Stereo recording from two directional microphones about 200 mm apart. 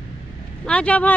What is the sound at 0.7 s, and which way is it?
Speech, 5° left (ahead or behind).